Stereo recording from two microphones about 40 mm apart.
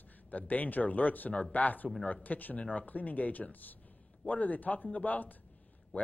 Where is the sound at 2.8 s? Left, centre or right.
Left.